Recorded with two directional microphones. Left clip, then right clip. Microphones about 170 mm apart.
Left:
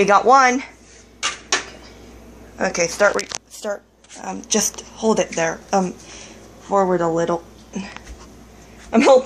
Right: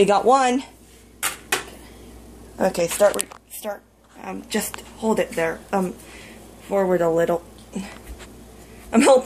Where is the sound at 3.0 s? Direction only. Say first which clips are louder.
Left 1 dB; 5° left (ahead or behind).